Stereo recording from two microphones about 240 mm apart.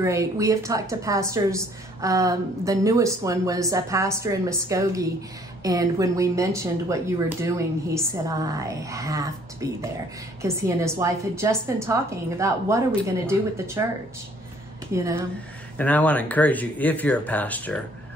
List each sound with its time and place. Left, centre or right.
0.0 s a woman's voice: centre
15.8 s speech: centre